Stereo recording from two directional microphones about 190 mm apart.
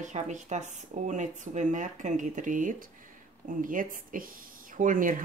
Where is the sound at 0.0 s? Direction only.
40° right (ahead or behind).